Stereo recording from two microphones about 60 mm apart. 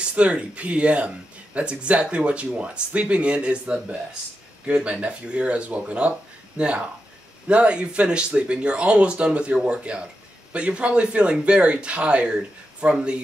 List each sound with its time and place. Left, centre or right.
0.1 s speech: centre